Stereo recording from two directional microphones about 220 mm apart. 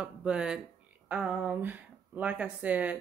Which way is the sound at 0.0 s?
5° right (ahead or behind).